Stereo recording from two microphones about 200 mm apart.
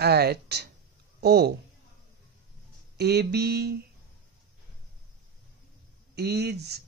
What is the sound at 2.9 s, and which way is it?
Speech, 55° right (ahead or behind).